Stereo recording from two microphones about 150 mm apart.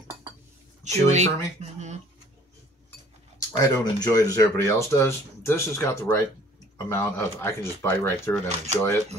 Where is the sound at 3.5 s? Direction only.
25° left (ahead or behind).